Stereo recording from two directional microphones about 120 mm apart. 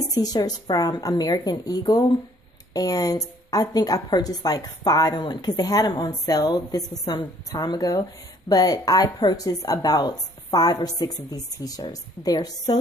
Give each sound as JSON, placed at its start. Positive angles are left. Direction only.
{"t": 0.1, "sound": "a woman's voice", "side_deg": 35}